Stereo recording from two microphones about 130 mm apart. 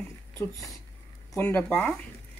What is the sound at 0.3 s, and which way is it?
Speech, 25° left (ahead or behind).